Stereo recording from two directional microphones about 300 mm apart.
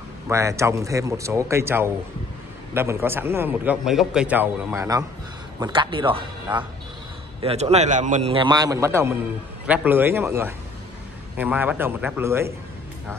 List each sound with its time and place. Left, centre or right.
0.3 s a man's voice: centre